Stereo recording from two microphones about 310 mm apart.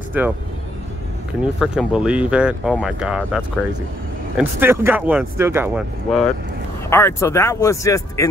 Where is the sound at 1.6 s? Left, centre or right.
Centre.